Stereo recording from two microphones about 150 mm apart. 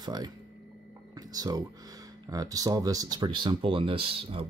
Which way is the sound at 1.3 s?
25° right (ahead or behind).